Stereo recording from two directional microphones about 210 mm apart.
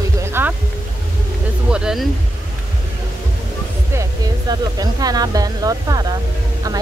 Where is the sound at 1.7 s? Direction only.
5° right (ahead or behind).